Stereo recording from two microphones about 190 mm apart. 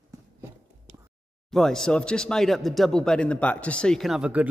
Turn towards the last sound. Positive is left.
turn(degrees=-5)  # may be behind; listen again after turning